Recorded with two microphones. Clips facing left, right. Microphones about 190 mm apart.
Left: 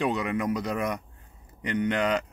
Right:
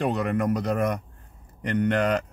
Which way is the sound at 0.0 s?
50° right (ahead or behind).